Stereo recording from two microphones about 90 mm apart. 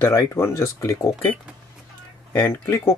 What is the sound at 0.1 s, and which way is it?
Speech, 35° left (ahead or behind).